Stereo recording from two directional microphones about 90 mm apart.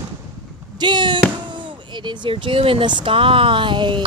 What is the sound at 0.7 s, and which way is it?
Speech, 60° right (ahead or behind).